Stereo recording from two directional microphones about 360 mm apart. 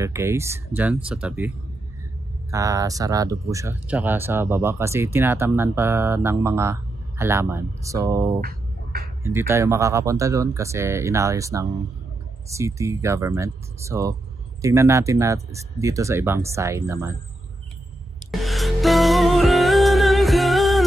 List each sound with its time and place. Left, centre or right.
0.0 s speech: centre
2.5 s speech: centre
8.4 s a sound: right
9.2 s speech: centre
18.3 s music: centre